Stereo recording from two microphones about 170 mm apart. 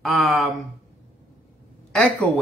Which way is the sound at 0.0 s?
Centre (ahead or behind).